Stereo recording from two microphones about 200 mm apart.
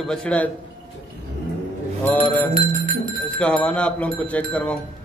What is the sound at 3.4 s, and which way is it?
Speech, 5° left (ahead or behind).